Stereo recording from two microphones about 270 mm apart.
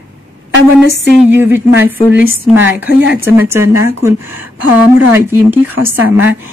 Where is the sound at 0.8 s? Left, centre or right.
Left.